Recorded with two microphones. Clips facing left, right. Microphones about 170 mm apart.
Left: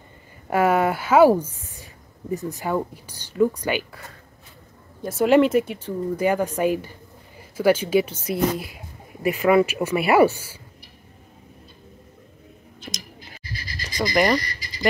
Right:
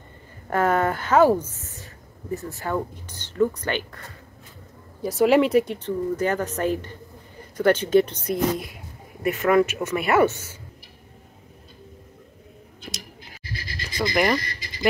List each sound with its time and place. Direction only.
0.5 s speech: 10° left (ahead or behind)
12.9 s a sound: 5° right (ahead or behind)
14.1 s frog: centre (ahead or behind)